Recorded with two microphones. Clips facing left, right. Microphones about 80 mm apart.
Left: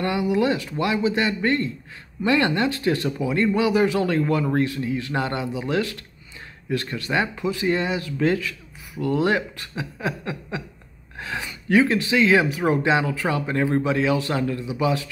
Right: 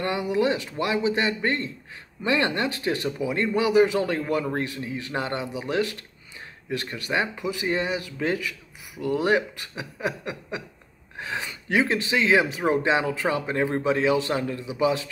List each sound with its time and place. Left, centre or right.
0.0 s a man's voice: right